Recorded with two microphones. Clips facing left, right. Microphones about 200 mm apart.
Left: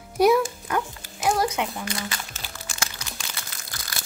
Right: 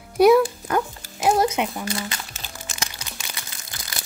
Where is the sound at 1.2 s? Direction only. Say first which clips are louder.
Right 4 dB; 20° right (ahead or behind).